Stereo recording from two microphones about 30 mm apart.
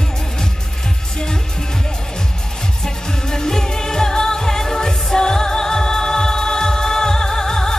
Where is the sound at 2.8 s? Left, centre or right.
Centre.